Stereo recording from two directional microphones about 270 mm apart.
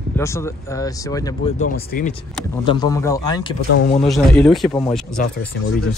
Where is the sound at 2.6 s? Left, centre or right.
Centre.